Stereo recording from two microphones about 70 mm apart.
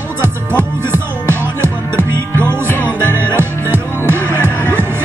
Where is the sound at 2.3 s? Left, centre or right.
Left.